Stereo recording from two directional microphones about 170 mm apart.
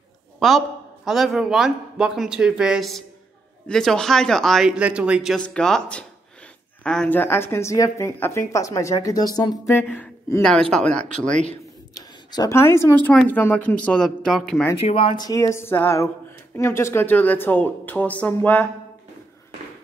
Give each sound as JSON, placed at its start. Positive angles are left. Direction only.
{"t": 0.4, "sound": "speech", "side_deg": 0}
{"t": 9.8, "sound": "speech", "side_deg": 10}
{"t": 11.9, "sound": "speech", "side_deg": 20}
{"t": 14.8, "sound": "speech", "side_deg": 35}